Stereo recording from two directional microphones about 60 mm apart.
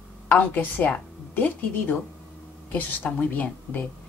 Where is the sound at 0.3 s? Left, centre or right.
Left.